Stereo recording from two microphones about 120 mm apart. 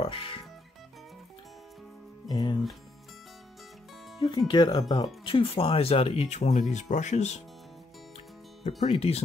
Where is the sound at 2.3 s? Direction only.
35° left (ahead or behind).